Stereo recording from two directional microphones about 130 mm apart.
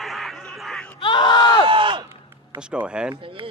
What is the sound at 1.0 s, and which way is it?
Speech, 35° left (ahead or behind).